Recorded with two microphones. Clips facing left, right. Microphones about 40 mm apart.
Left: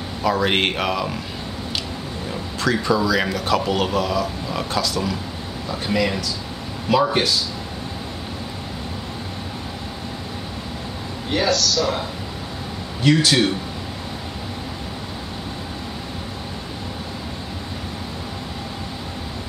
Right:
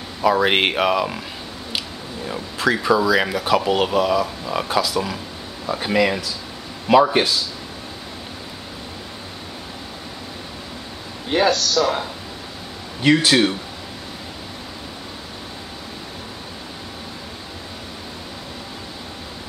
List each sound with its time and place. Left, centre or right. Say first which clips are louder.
0.2 s speech: right 3 dB; centre
2.2 s speech: right 2 dB; centre
11.2 s a man's voice: right 2 dB; right
13.0 s a man's voice: right 1 dB; centre